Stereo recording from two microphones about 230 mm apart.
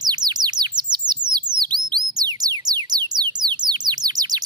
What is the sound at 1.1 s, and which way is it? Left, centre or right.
Music, centre.